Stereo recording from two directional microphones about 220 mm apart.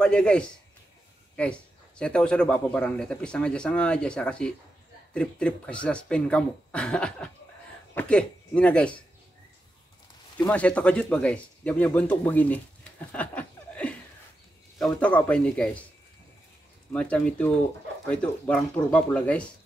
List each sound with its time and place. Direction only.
0.0 s a man's voice: 5° left (ahead or behind)
10.3 s a man's voice: 5° left (ahead or behind)
13.1 s chuckle: 5° left (ahead or behind)
14.8 s a man's voice: 5° left (ahead or behind)
16.9 s a man's voice: 5° left (ahead or behind)